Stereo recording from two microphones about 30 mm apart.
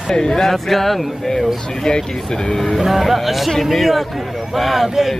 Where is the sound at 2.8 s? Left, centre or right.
Centre.